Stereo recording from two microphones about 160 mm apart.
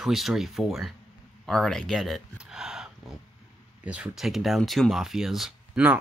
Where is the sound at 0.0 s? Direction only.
Centre (ahead or behind).